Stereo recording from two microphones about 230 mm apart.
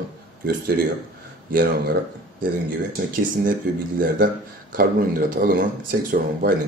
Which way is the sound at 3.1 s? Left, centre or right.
Right.